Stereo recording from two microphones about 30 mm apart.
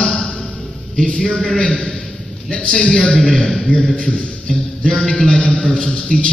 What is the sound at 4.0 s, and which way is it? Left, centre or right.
A man's voice, left.